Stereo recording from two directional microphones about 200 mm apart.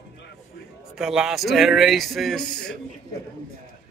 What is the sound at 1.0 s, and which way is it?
Speech, 5° right (ahead or behind).